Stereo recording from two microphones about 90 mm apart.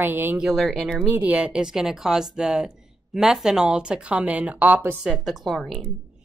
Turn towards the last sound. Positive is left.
turn(degrees=5)  # may be behind; listen again after turning